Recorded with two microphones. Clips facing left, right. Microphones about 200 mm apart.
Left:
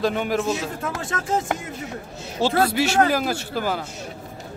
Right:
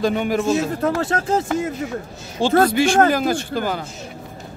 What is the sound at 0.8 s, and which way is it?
Speech, 35° right (ahead or behind).